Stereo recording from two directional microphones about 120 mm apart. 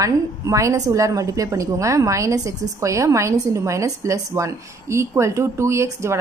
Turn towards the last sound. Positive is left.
turn(degrees=-25)  # may be behind; listen again after turning